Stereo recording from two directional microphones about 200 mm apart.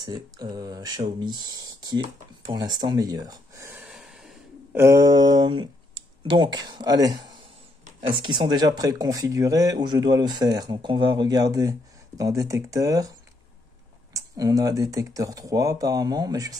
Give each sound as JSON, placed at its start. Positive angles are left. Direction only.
{"t": 0.0, "sound": "speech", "side_deg": -20}
{"t": 4.7, "sound": "speech", "side_deg": -15}
{"t": 14.1, "sound": "speech", "side_deg": -15}